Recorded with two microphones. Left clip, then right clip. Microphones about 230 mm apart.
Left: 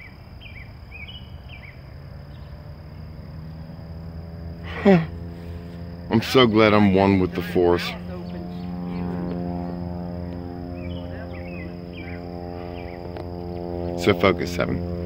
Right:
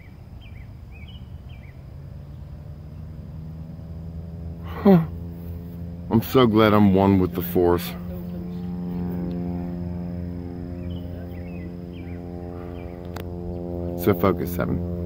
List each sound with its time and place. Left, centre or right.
4.7 s a sound: centre
6.0 s speech: centre
8.8 s music: centre
13.5 s music: left
14.0 s speech: centre